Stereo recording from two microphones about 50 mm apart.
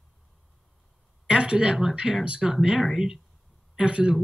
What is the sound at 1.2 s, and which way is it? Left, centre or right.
Speech, centre.